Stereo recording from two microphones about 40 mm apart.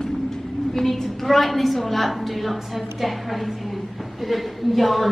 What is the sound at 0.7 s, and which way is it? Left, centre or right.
Speech, centre.